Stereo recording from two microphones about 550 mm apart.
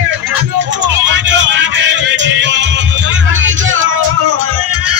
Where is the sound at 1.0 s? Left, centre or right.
Centre.